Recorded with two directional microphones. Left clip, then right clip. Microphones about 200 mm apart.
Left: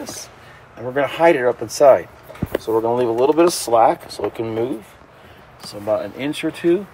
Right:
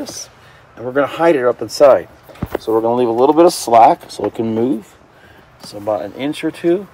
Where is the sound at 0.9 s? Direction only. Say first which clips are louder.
Right 2 dB; 55° right (ahead or behind).